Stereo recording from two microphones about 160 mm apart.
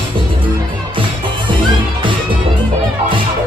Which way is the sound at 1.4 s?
30° right (ahead or behind).